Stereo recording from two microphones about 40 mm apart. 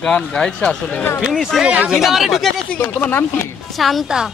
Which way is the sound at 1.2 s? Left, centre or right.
Centre.